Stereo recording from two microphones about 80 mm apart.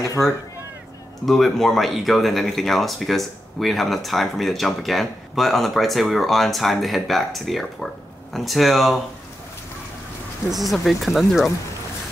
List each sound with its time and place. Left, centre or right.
0.0 s a sound: left
1.2 s speech: centre
10.5 s speech: centre